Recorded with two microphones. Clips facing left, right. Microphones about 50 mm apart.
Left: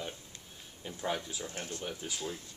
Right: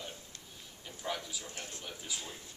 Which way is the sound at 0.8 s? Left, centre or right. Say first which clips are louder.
Left 4 dB; left.